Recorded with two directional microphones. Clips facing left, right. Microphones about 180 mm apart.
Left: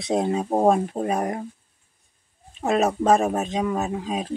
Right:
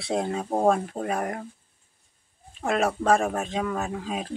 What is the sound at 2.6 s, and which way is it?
Speech, 20° left (ahead or behind).